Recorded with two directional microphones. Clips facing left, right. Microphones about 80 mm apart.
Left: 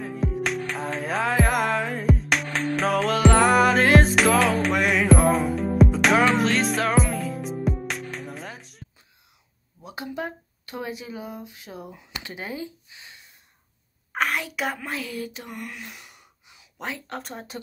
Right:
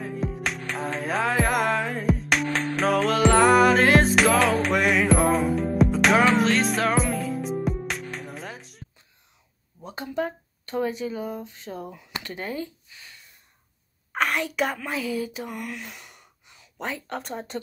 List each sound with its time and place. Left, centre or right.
0.0 s music: centre
9.8 s speech: centre
12.2 s a sound: centre
14.1 s a woman's voice: centre